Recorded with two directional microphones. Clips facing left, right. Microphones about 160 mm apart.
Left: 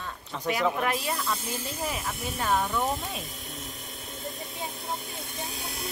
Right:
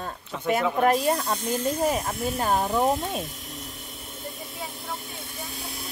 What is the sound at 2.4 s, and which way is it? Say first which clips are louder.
Speech: right 2 dB; 45° right (ahead or behind).